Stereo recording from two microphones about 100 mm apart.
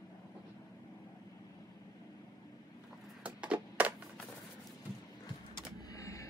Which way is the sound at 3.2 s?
10° right (ahead or behind).